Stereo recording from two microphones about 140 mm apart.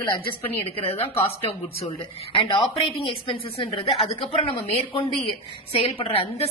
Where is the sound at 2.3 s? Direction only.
35° left (ahead or behind).